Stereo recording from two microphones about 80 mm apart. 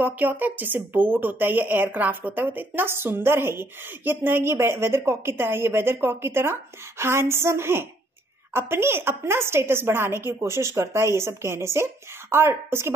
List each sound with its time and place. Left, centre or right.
0.0 s a woman's voice: right